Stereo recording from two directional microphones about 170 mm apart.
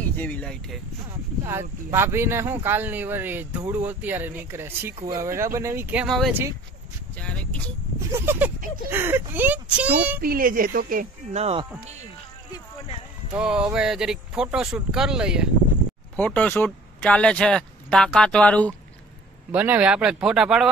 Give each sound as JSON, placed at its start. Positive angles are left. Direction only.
{"t": 0.0, "sound": "speech", "side_deg": 10}
{"t": 1.4, "sound": "speech", "side_deg": -15}
{"t": 6.0, "sound": "speech", "side_deg": 0}
{"t": 8.1, "sound": "speech", "side_deg": -15}
{"t": 10.2, "sound": "speech", "side_deg": -60}
{"t": 11.3, "sound": "speech", "side_deg": -40}
{"t": 13.3, "sound": "speech", "side_deg": -5}
{"t": 16.2, "sound": "speech", "side_deg": 10}
{"t": 19.5, "sound": "speech", "side_deg": -10}